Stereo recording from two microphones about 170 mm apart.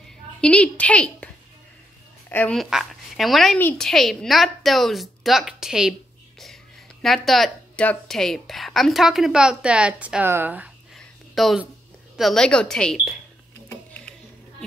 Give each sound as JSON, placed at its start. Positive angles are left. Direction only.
{"t": 0.4, "sound": "a woman's voice", "side_deg": 5}
{"t": 2.2, "sound": "a sound", "side_deg": 10}
{"t": 2.5, "sound": "a woman's voice", "side_deg": 0}
{"t": 7.0, "sound": "a woman's voice", "side_deg": 0}
{"t": 11.0, "sound": "a sound", "side_deg": 0}
{"t": 12.2, "sound": "a woman's voice", "side_deg": 0}